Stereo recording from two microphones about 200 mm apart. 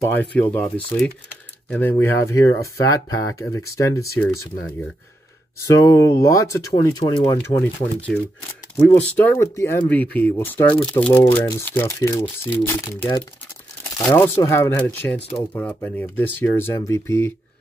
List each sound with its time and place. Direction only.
0.0 s speech: 10° left (ahead or behind)
1.7 s speech: 10° left (ahead or behind)
5.6 s speech: 15° left (ahead or behind)